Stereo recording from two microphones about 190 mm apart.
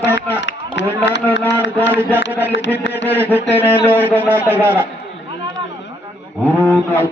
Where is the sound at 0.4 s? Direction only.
70° left (ahead or behind).